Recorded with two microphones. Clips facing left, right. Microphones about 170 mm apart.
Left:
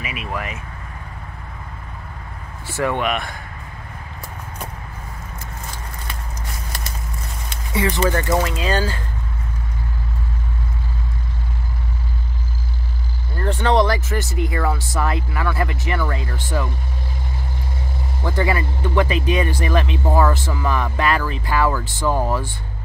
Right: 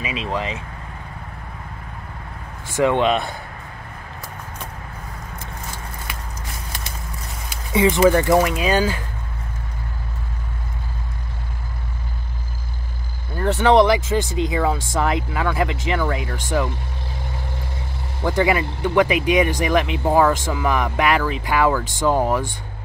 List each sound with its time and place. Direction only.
0.0 s speech: 25° right (ahead or behind)
2.8 s speech: 25° right (ahead or behind)
7.7 s speech: 20° right (ahead or behind)
13.6 s speech: 15° right (ahead or behind)
18.2 s speech: 15° right (ahead or behind)